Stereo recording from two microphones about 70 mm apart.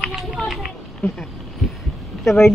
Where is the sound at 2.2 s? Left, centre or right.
Centre.